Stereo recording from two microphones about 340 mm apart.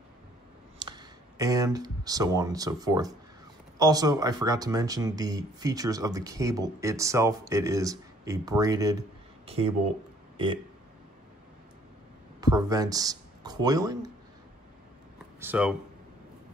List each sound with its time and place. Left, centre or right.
0.7 s speech: centre
12.4 s speech: centre
15.4 s speech: centre